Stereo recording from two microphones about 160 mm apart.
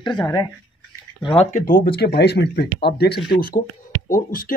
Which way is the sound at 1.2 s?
35° left (ahead or behind).